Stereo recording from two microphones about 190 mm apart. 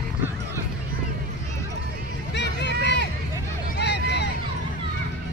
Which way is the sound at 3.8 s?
60° left (ahead or behind).